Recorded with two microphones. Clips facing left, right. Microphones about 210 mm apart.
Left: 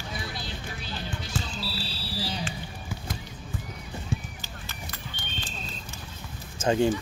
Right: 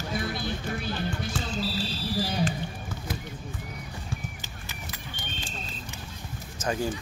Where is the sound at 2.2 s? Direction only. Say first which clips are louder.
Right 5 dB; 50° right (ahead or behind).